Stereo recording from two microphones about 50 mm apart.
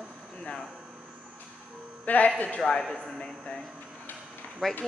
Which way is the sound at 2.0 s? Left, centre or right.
Left.